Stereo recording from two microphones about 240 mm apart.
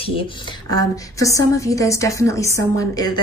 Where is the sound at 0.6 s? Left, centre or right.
Centre.